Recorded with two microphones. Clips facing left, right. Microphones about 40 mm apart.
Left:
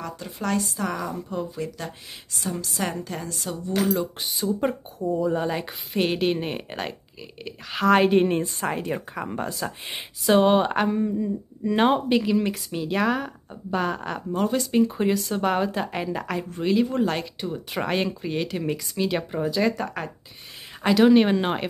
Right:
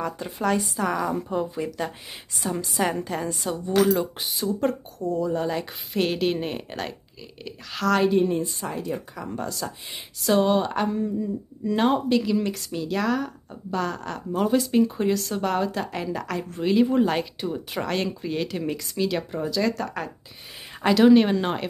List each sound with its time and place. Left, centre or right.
0.0 s speech: centre
4.5 s a woman's voice: centre
8.0 s a woman's voice: left
11.0 s speech: centre
12.2 s a woman's voice: centre
14.3 s a woman's voice: centre
17.7 s a woman's voice: centre
20.8 s a woman's voice: centre